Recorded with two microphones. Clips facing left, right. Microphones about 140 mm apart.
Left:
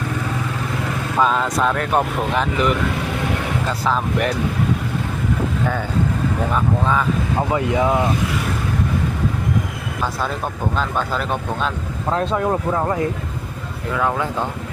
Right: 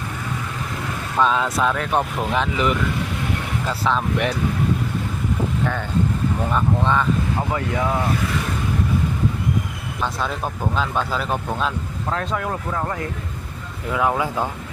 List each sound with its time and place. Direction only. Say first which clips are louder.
1.1 s speech: left 1 dB; 5° left (ahead or behind)
3.9 s speech: left 1 dB; centre (ahead or behind)
6.5 s speech: even; 5° left (ahead or behind)
7.5 s speech: left 6 dB; 20° left (ahead or behind)
10.8 s speech: left 1 dB; centre (ahead or behind)
12.1 s speech: left 6 dB; 30° left (ahead or behind)
13.9 s speech: even; 5° right (ahead or behind)